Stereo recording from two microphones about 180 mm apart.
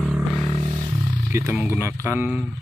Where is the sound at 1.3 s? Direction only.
15° right (ahead or behind).